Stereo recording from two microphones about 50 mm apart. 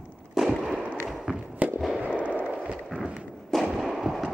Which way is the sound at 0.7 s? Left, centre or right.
Right.